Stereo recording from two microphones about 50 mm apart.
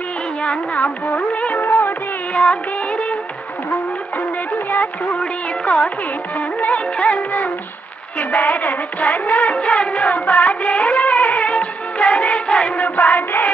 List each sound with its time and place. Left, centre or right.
0.4 s music: left
1.6 s music of bollywood: left
2.3 s music of bollywood: left
4.6 s music: left
6.6 s music of bollywood: left
12.8 s child singing: left